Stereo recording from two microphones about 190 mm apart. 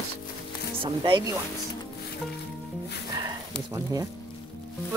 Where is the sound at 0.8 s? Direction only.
25° right (ahead or behind).